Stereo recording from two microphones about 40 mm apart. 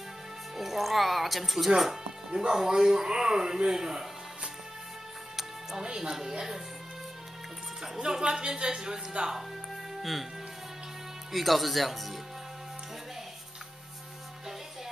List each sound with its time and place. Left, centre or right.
0.6 s speech: centre
5.3 s music: centre
5.8 s speech: centre
7.8 s speech: centre
11.3 s speech: centre